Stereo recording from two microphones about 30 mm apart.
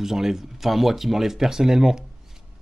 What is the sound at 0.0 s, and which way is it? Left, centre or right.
Speech, centre.